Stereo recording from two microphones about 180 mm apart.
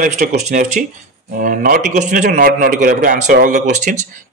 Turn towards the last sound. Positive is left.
turn(degrees=-40)  # may be behind; listen again after turning